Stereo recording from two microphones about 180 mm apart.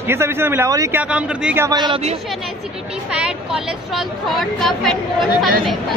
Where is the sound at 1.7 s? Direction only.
25° right (ahead or behind).